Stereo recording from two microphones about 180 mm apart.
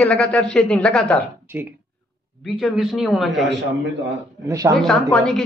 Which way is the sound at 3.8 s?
75° right (ahead or behind).